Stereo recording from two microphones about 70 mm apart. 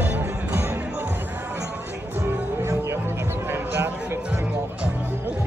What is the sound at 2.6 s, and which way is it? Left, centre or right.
Music, right.